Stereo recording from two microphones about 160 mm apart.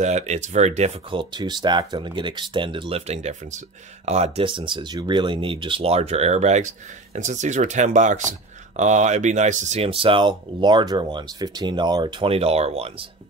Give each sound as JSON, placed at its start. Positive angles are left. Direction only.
{"t": 0.0, "sound": "speech", "side_deg": -45}
{"t": 1.1, "sound": "speech", "side_deg": -30}